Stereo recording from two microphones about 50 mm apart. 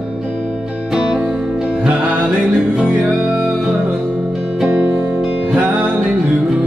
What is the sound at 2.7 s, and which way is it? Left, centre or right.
Music, right.